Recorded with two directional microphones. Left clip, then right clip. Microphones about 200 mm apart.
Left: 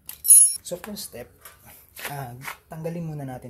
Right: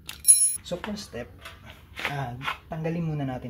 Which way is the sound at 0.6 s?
40° left (ahead or behind).